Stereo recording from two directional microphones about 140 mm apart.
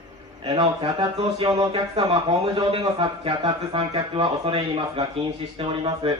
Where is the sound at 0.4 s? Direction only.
40° right (ahead or behind).